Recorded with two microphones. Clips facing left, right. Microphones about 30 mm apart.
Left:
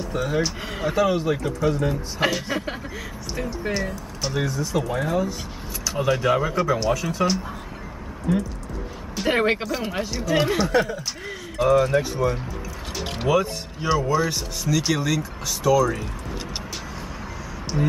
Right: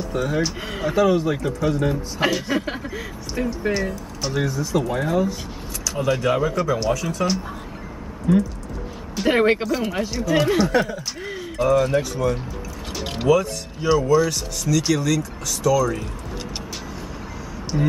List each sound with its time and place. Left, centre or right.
0.0 s speech: centre
8.3 s speech: centre
17.7 s speech: centre